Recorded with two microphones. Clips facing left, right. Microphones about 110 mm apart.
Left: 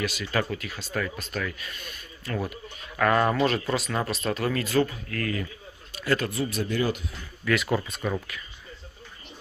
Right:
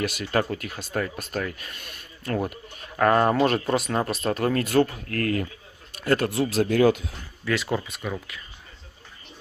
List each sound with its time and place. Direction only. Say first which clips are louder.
0.0 s speech: right 3 dB; 50° right (ahead or behind)
3.0 s speech: right 3 dB; 40° right (ahead or behind)
6.5 s speech: right 10 dB; 90° right
7.4 s speech: left 1 dB; 25° right (ahead or behind)